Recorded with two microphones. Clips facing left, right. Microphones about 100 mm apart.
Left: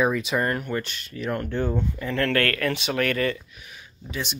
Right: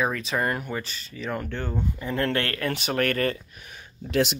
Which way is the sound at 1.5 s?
15° left (ahead or behind).